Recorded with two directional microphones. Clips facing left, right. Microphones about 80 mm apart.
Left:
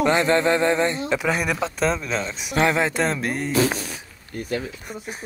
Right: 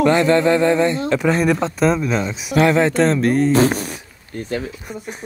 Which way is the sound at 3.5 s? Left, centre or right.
Right.